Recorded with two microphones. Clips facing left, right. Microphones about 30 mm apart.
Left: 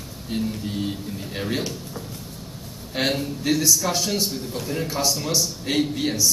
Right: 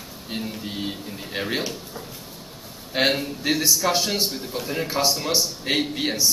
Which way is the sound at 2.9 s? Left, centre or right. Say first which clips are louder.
Right 2 dB; centre.